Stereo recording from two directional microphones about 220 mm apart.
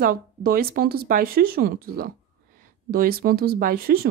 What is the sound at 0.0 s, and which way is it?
Speech, 40° right (ahead or behind).